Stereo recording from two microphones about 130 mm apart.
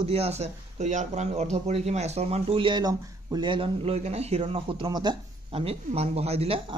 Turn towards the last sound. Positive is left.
turn(degrees=-50)  # may be behind; listen again after turning